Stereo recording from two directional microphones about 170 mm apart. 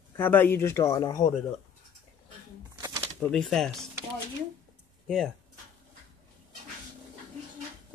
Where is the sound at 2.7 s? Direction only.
25° right (ahead or behind).